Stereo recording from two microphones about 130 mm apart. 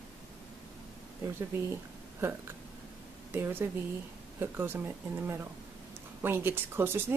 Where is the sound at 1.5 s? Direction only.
20° right (ahead or behind).